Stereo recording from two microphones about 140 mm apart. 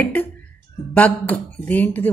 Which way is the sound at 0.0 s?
10° left (ahead or behind).